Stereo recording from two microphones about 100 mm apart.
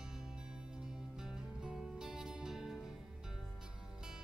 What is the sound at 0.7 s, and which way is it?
Music, 5° right (ahead or behind).